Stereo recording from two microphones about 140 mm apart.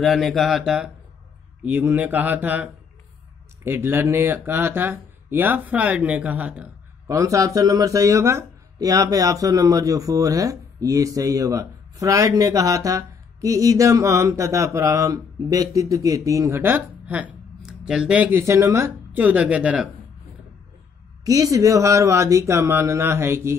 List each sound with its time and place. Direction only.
0.0 s speech: centre (ahead or behind)
7.1 s speech: 25° right (ahead or behind)
18.4 s speech: 20° right (ahead or behind)
21.2 s speech: 25° right (ahead or behind)